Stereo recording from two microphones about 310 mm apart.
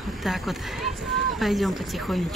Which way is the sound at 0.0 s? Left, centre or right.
Centre.